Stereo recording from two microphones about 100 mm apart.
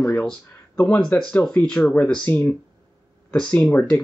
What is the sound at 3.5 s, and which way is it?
Speech, 15° left (ahead or behind).